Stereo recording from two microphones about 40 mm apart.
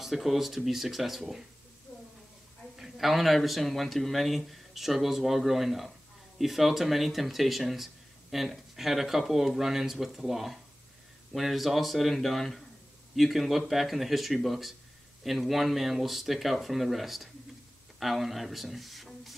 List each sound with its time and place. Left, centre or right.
0.0 s speech: centre
2.7 s speech: centre